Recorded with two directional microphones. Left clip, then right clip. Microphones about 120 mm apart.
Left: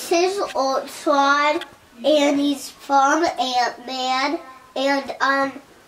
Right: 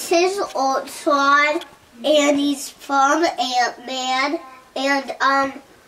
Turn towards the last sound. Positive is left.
turn(degrees=-5)  # may be behind; listen again after turning